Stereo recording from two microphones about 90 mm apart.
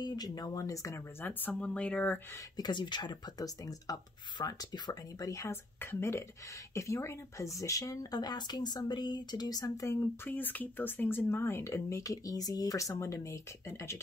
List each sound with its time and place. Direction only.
0.0 s speech: 50° left (ahead or behind)
0.9 s speech: 20° left (ahead or behind)
1.5 s speech: 10° left (ahead or behind)
2.5 s speech: 55° left (ahead or behind)
5.3 s speech: 30° left (ahead or behind)
9.8 s speech: 25° left (ahead or behind)